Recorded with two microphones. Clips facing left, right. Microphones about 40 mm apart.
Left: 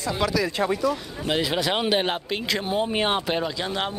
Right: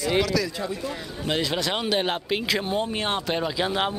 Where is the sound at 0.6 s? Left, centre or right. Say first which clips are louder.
Left 7 dB; left.